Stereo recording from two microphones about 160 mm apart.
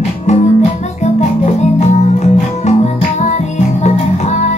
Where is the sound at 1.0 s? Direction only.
45° left (ahead or behind).